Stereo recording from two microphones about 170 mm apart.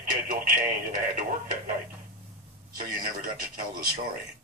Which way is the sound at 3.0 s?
55° right (ahead or behind).